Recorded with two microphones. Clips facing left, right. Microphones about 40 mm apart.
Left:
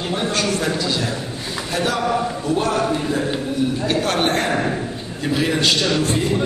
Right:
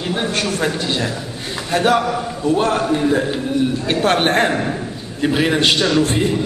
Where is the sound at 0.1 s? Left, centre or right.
Right.